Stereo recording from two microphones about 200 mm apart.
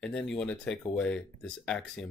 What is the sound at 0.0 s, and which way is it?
Speech, 5° left (ahead or behind).